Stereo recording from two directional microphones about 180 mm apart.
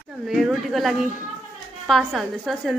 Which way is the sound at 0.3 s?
Centre (ahead or behind).